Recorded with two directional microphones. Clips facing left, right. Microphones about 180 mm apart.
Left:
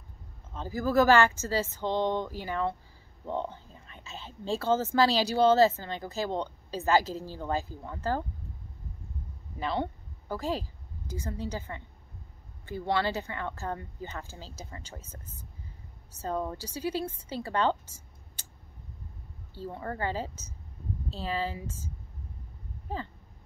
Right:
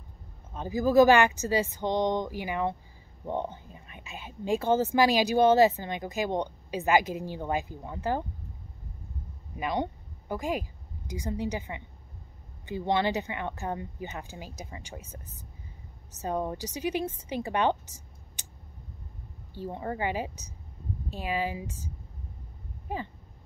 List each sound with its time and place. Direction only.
0.5 s speech: 15° right (ahead or behind)
9.6 s a woman's voice: 15° right (ahead or behind)
16.2 s speech: 15° right (ahead or behind)
19.5 s speech: 15° right (ahead or behind)